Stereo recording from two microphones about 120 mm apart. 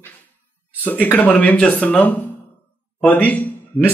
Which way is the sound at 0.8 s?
15° left (ahead or behind).